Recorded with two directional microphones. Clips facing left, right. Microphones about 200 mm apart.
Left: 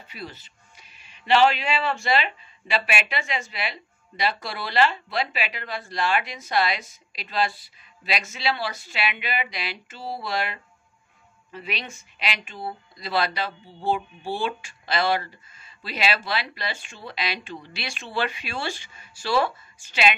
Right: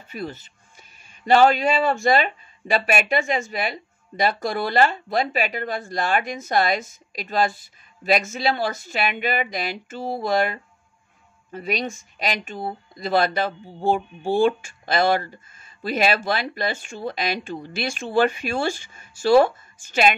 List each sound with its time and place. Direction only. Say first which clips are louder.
0.1 s speech: right 8 dB; 50° right (ahead or behind)